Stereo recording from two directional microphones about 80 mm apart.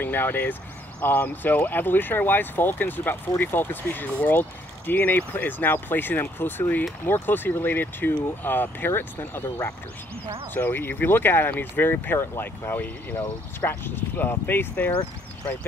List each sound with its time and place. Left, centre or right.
0.0 s speech: left
10.5 s speech: left